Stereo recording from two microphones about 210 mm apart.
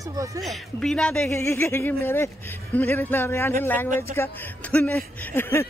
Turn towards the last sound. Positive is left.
turn(degrees=10)  # may be behind; listen again after turning